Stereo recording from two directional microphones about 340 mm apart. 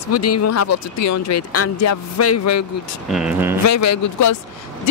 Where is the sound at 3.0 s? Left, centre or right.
Centre.